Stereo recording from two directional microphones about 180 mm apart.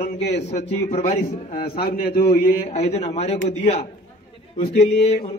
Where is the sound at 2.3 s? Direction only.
35° left (ahead or behind).